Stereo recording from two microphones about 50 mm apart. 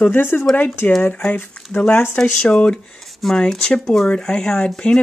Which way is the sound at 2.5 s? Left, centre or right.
Centre.